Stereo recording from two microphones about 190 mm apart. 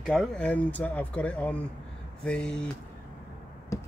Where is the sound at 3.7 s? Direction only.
15° left (ahead or behind).